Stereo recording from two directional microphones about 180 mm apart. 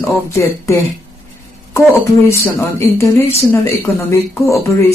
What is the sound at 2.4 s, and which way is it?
Speech, 15° left (ahead or behind).